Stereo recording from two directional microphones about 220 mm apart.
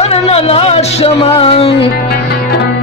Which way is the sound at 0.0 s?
30° left (ahead or behind).